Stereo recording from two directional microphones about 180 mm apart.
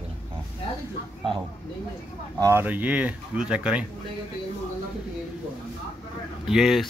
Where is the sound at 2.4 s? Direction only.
10° right (ahead or behind).